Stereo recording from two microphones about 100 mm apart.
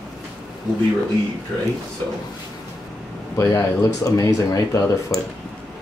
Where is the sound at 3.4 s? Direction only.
35° left (ahead or behind).